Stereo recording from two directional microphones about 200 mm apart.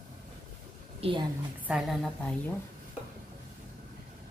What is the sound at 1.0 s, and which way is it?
Speech, 25° right (ahead or behind).